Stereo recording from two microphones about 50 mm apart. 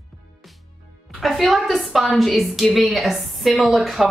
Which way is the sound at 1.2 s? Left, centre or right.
Centre.